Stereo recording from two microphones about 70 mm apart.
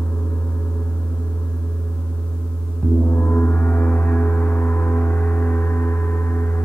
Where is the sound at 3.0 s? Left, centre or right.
Left.